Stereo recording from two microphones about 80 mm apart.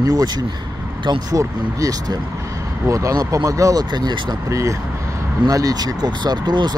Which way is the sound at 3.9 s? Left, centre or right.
Right.